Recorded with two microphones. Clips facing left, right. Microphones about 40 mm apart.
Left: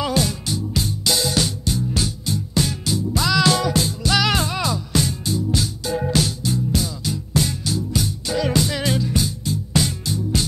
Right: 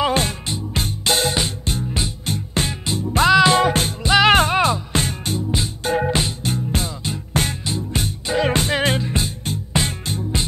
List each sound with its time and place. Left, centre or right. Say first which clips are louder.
0.0 s music: right 2 dB; right
3.3 s music: right 3 dB; right
3.6 s music: right 2 dB; right
4.0 s music: right 6 dB; right
4.3 s music: right 7 dB; right
6.4 s music: left 1 dB; right